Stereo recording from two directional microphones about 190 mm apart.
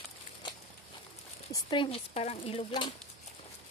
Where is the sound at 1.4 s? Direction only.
25° left (ahead or behind).